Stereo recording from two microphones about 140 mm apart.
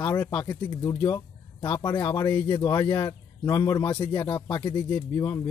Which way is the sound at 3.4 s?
20° left (ahead or behind).